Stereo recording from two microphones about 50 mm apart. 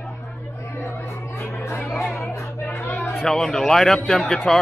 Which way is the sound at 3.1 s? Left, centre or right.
Centre.